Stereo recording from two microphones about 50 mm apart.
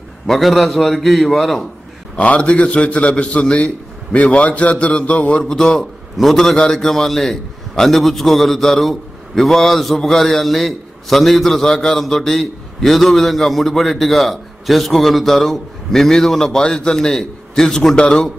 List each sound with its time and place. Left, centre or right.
0.3 s a man's voice: centre
2.1 s a man's voice: left
5.4 s a man's voice: centre